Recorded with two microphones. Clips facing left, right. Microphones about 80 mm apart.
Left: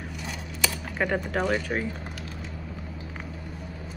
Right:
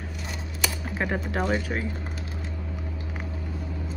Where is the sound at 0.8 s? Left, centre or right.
Centre.